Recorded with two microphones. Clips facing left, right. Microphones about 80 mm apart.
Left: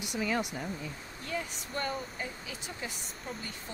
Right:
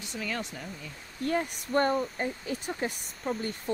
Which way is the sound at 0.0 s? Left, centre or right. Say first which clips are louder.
Left 3 dB; centre.